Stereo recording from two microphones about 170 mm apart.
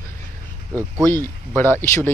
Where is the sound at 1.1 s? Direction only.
15° left (ahead or behind).